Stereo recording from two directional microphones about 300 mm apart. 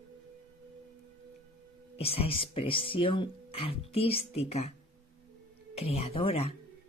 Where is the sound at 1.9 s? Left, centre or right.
Centre.